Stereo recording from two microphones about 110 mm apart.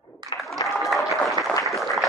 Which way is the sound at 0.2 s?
40° right (ahead or behind).